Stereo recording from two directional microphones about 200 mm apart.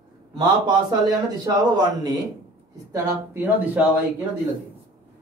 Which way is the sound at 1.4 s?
20° right (ahead or behind).